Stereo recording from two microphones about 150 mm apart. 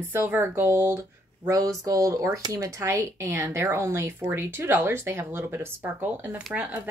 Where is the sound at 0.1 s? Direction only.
15° right (ahead or behind).